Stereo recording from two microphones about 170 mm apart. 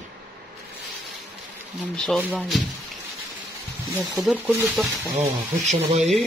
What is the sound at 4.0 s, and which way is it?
Speech, centre (ahead or behind).